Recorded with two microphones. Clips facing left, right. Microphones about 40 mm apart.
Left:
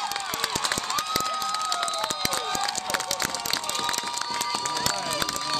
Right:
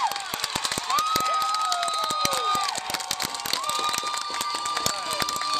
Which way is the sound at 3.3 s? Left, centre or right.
Centre.